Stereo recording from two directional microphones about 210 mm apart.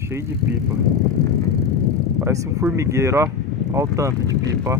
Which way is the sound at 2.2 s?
15° right (ahead or behind).